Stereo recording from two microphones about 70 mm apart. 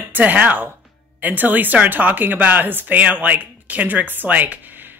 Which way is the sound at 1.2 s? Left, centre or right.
Right.